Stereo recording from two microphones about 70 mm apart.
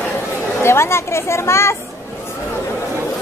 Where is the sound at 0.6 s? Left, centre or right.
Left.